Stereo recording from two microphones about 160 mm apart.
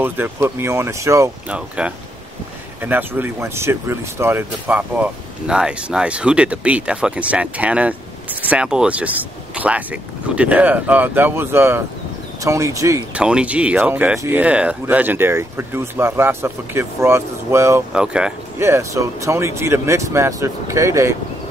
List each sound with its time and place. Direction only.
0.0 s speech: 15° right (ahead or behind)
1.5 s speech: 5° right (ahead or behind)
13.1 s speech: 5° right (ahead or behind)
17.9 s speech: 5° right (ahead or behind)
18.6 s speech: 15° right (ahead or behind)